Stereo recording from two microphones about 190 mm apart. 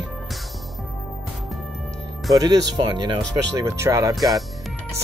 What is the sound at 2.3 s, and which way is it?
Speech, 20° right (ahead or behind).